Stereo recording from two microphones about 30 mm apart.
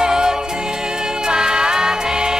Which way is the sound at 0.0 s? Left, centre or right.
Right.